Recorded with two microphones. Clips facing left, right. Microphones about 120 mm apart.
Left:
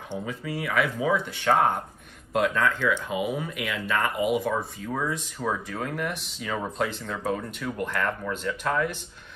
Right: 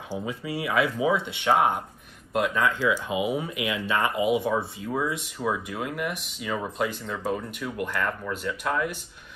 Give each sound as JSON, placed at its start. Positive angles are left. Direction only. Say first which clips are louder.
{"t": 0.2, "sound": "speech", "louder": "right 1 dB", "side_deg": -20}
{"t": 2.8, "sound": "speech", "louder": "right 1 dB", "side_deg": -20}